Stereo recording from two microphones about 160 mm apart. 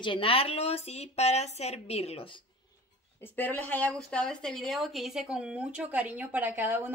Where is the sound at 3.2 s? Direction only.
10° left (ahead or behind).